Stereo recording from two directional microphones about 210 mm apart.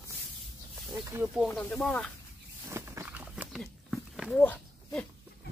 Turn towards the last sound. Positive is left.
turn(degrees=10)  # may be behind; listen again after turning